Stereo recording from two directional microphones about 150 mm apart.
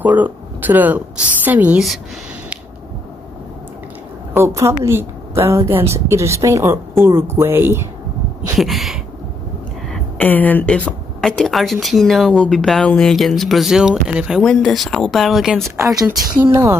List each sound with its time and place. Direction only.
0.0 s a woman's voice: 10° right (ahead or behind)
4.4 s a woman's voice: 20° right (ahead or behind)
8.5 s a sound: centre (ahead or behind)
9.8 s speech: 5° left (ahead or behind)